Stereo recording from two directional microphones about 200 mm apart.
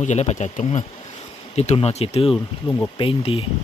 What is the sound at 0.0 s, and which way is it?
Speech, 35° left (ahead or behind).